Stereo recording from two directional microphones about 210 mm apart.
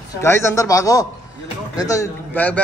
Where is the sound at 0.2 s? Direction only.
15° left (ahead or behind).